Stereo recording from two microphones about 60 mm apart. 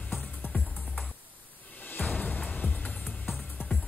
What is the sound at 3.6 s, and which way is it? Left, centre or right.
Music, left.